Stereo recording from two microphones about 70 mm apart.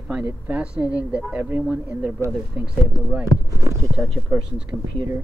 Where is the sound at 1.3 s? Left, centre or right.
Right.